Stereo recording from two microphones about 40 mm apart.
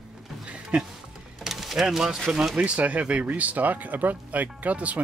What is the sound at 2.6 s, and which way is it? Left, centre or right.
Speech, right.